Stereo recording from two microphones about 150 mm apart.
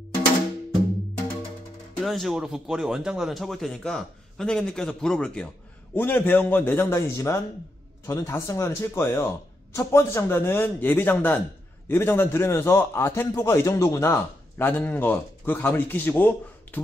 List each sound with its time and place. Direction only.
2.0 s a man's voice: centre (ahead or behind)